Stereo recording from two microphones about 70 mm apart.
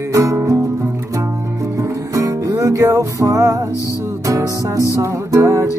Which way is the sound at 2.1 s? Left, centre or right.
Right.